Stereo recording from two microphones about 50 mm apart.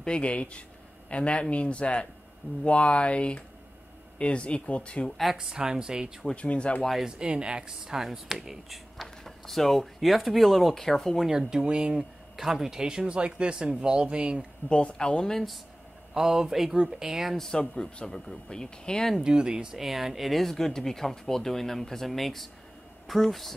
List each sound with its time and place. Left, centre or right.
0.0 s speech: left
5.3 s speech: centre
6.3 s speech: left
7.1 s speech: centre
11.2 s speech: centre
12.4 s speech: centre
14.7 s speech: left
16.1 s speech: centre
17.6 s speech: centre
19.2 s speech: centre
19.8 s speech: centre